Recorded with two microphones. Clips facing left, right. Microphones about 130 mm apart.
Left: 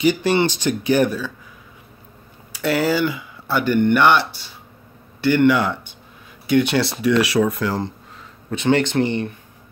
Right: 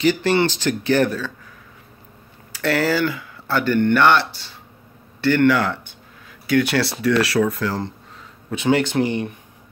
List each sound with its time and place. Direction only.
0.0 s speech: 15° left (ahead or behind)
2.5 s speech: 15° left (ahead or behind)
8.5 s speech: 5° right (ahead or behind)